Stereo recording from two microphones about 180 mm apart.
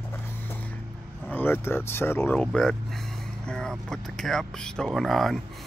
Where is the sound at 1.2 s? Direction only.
10° left (ahead or behind).